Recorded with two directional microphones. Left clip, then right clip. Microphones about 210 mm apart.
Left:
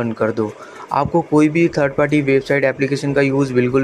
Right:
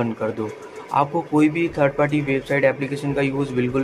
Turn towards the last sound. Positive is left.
turn(degrees=25)  # may be behind; listen again after turning